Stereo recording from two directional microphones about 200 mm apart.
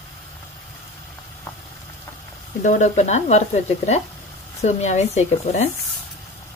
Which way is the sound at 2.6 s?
40° left (ahead or behind).